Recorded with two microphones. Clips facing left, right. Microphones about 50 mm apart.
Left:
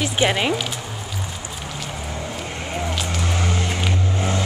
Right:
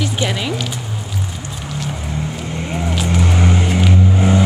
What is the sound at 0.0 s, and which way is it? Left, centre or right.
Speech, centre.